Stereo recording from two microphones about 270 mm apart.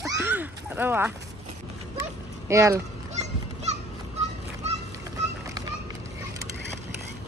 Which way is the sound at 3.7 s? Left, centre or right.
Right.